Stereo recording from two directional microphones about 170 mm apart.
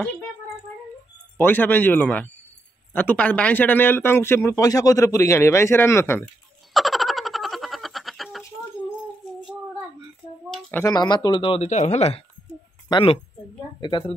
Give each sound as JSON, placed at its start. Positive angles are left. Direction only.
{"t": 1.4, "sound": "speech", "side_deg": 10}
{"t": 6.7, "sound": "a sound", "side_deg": 0}
{"t": 10.7, "sound": "speech", "side_deg": 20}